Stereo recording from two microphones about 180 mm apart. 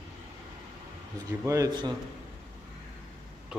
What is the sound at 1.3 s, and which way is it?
Speech, 15° right (ahead or behind).